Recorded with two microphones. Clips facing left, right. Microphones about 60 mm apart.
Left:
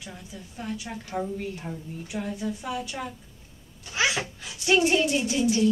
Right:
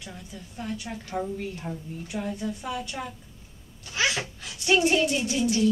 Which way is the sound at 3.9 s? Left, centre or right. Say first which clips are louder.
Left 1 dB; centre.